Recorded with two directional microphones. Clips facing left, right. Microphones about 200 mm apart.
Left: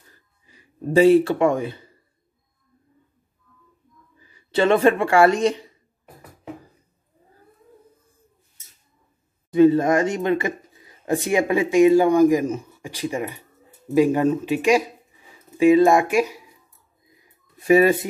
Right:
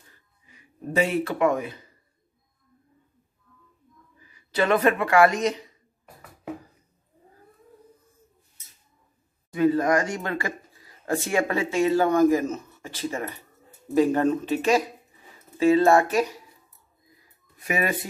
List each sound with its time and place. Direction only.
0.5 s a man's voice: 30° left (ahead or behind)
4.2 s speech: 30° left (ahead or behind)
9.5 s speech: 25° left (ahead or behind)
17.1 s a sound: 25° left (ahead or behind)